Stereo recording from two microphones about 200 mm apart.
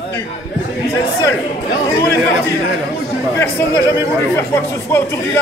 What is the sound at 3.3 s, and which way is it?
Speech, 15° left (ahead or behind).